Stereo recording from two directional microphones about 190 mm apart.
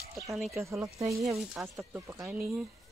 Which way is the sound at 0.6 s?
15° right (ahead or behind).